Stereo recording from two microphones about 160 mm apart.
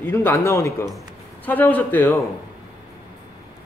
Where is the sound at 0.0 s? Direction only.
15° left (ahead or behind).